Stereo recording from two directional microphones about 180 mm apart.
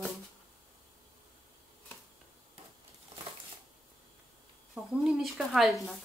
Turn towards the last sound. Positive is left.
turn(degrees=0)  # may be behind; listen again after turning